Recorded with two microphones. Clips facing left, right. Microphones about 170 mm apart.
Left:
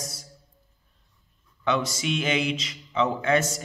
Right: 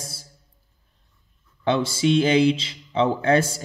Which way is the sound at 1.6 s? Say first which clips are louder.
Right 5 dB; 30° right (ahead or behind).